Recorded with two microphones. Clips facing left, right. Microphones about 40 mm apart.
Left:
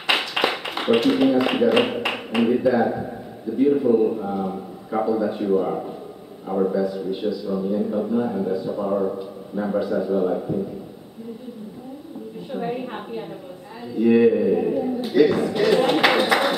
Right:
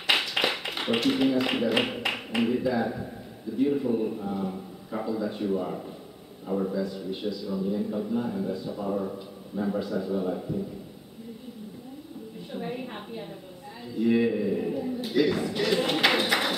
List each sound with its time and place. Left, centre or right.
0.0 s a sound: centre
2.0 s speech: centre
5.0 s speech: centre
6.4 s a man's voice: left
6.7 s a man's voice: centre
8.7 s a man's voice: left
9.8 s speech: centre
12.5 s a woman's voice: left